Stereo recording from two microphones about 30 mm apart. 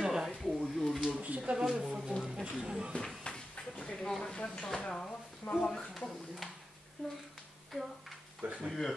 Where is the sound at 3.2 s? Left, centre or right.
Left.